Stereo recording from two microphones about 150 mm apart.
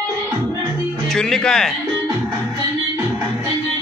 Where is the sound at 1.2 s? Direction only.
5° left (ahead or behind).